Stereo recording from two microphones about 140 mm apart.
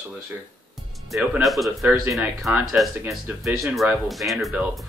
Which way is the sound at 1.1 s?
5° right (ahead or behind).